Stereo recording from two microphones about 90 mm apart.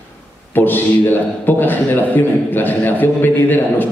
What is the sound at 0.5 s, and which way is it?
A man's voice, 20° left (ahead or behind).